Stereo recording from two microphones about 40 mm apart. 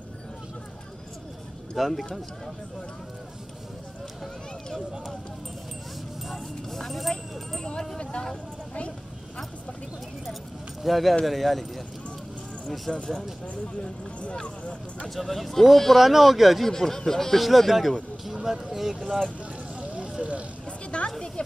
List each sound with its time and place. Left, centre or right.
1.8 s speech: centre
6.3 s speech: centre
7.5 s speech: centre
10.8 s speech: centre
12.9 s speech: left
14.6 s speech: left
15.1 s speech: centre
16.6 s speech: centre
17.4 s speech: centre
19.8 s vehicle: right
20.9 s a sound: left